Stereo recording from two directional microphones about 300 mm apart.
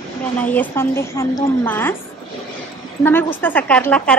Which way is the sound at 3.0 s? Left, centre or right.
Centre.